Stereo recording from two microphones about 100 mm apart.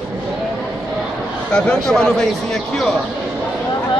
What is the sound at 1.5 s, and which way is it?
Speech, 10° left (ahead or behind).